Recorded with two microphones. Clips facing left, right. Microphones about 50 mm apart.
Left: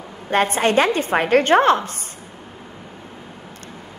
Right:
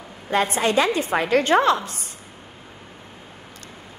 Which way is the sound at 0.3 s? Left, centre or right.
Left.